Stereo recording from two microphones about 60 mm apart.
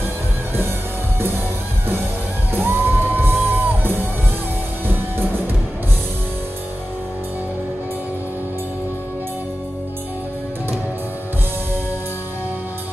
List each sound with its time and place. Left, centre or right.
2.5 s music: right